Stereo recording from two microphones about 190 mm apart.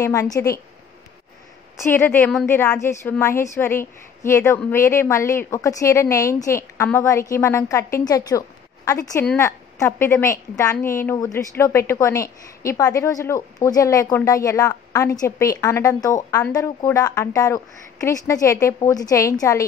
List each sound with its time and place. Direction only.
0.0 s a woman's voice: 15° left (ahead or behind)
1.8 s a woman's voice: 10° left (ahead or behind)